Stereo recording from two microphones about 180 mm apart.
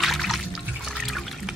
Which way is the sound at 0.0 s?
Centre (ahead or behind).